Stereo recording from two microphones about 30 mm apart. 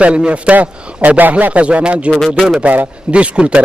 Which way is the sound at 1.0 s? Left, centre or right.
Right.